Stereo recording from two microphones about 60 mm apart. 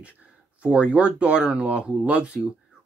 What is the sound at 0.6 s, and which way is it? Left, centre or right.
Speech, centre.